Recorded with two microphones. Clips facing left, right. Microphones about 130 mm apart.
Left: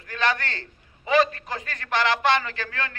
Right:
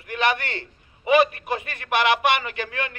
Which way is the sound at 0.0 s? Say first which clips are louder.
Right 2 dB; 20° right (ahead or behind).